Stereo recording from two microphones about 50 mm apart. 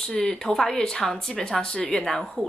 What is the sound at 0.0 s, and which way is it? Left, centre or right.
Speech, centre.